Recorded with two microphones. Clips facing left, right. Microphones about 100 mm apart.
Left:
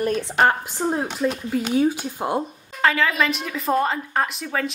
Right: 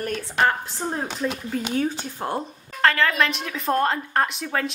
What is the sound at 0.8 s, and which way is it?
Speech, 5° left (ahead or behind).